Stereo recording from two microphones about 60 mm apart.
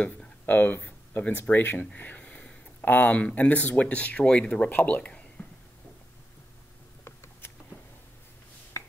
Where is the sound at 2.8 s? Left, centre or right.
Left.